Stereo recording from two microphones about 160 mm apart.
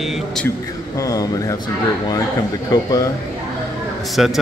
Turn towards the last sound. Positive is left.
turn(degrees=0)  # may be behind; listen again after turning